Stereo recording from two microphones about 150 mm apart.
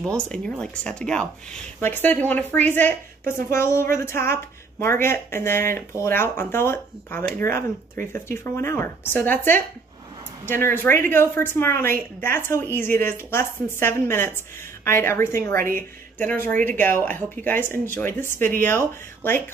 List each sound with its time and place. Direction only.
0.3 s speech: 5° left (ahead or behind)